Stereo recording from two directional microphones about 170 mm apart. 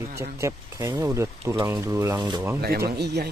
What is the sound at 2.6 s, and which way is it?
Speech, 70° right (ahead or behind).